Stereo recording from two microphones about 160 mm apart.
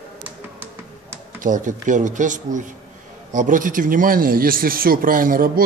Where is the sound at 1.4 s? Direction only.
55° right (ahead or behind).